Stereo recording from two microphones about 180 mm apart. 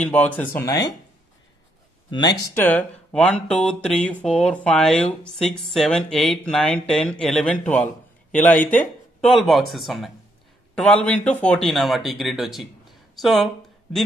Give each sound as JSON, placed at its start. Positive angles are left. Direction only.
{"t": 0.0, "sound": "speech", "side_deg": 10}
{"t": 2.0, "sound": "speech", "side_deg": 25}
{"t": 2.5, "sound": "speech", "side_deg": 10}